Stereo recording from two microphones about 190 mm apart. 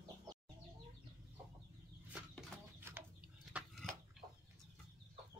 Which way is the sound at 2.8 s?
10° right (ahead or behind).